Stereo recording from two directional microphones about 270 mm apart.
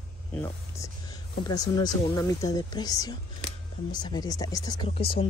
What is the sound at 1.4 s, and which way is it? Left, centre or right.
Speech, centre.